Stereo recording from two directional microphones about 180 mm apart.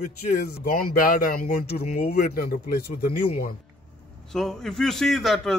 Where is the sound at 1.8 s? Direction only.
35° left (ahead or behind); by 2.8 s 55° left (ahead or behind).